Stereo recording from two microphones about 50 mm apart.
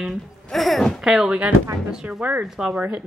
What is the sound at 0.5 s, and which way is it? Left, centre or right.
Speech, centre.